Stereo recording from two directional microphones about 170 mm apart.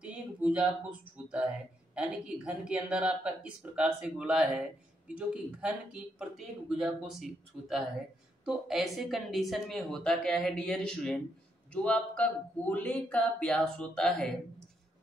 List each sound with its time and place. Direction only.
0.0 s speech: 5° right (ahead or behind)